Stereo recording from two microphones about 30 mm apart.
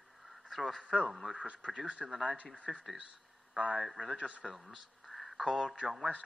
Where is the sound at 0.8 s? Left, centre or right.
Right.